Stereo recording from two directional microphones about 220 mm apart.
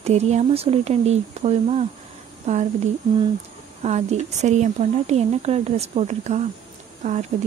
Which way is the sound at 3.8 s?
30° right (ahead or behind).